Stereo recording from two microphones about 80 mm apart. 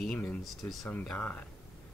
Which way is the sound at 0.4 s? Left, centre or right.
Centre.